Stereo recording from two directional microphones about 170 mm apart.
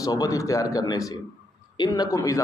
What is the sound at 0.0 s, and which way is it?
A man's voice, 20° left (ahead or behind).